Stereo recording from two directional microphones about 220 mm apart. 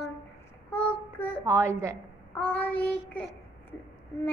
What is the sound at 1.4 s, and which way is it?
Speech, 10° right (ahead or behind).